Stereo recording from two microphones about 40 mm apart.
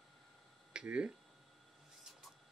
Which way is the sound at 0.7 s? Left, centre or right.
Right.